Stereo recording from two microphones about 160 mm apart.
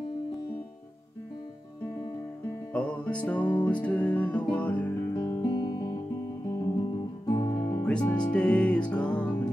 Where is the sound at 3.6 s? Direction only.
10° left (ahead or behind).